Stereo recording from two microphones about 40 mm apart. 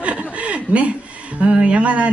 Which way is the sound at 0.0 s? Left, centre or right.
Right.